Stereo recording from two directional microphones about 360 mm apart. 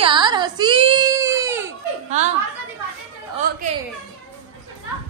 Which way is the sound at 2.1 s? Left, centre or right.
Centre.